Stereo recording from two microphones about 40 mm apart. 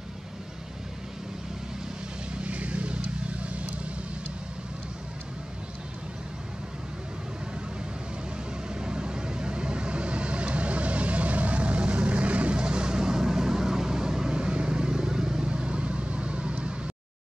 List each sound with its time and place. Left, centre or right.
2.4 s vehicle: right
8.7 s vehicle: right